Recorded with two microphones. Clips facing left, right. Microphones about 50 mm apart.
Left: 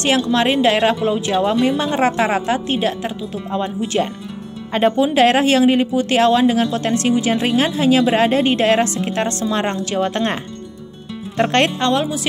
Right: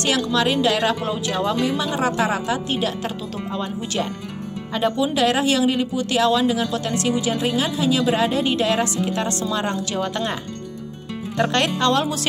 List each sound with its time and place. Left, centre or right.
0.0 s speech: left
11.3 s speech: left
11.8 s speech: centre